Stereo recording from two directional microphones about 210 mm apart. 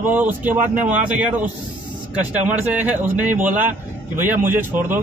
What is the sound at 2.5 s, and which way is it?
Speech, 10° right (ahead or behind).